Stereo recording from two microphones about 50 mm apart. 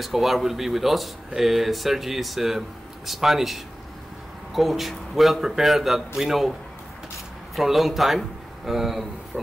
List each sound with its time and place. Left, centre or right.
0.0 s speech: centre
7.5 s speech: centre